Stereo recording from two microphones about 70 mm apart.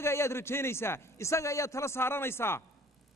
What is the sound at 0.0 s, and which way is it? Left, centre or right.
A man's voice, left.